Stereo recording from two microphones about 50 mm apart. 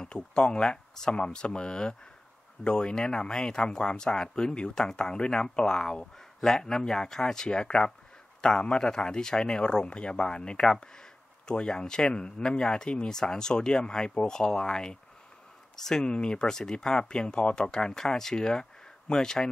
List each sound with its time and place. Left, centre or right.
0.0 s speech: centre